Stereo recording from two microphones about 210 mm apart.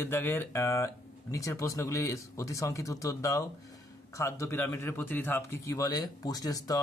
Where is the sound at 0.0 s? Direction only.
10° left (ahead or behind).